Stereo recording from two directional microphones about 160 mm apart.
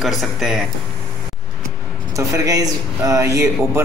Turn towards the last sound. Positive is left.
turn(degrees=-20)  # may be behind; listen again after turning